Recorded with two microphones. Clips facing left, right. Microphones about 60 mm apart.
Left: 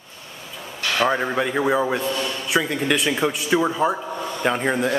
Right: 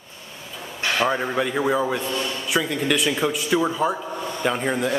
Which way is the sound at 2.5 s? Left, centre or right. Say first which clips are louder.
Left 1 dB; centre.